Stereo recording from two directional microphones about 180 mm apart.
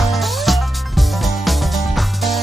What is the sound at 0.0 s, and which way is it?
Music, centre (ahead or behind).